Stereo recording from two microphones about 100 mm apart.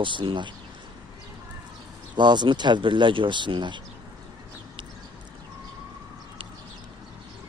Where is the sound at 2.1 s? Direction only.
50° right (ahead or behind).